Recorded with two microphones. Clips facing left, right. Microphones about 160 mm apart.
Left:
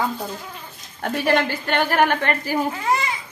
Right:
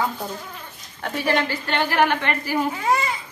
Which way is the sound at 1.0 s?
50° left (ahead or behind).